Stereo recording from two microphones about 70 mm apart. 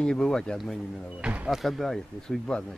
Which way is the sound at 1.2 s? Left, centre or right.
Centre.